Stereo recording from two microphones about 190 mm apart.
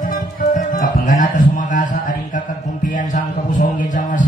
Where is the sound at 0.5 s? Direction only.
45° left (ahead or behind).